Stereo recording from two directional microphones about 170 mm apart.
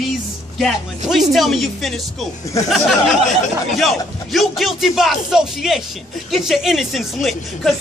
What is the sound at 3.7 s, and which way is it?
Speech, centre (ahead or behind).